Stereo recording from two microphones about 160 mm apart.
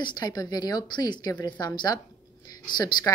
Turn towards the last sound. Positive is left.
turn(degrees=25)  # may be behind; listen again after turning